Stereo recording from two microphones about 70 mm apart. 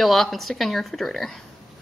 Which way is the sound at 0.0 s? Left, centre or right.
Centre.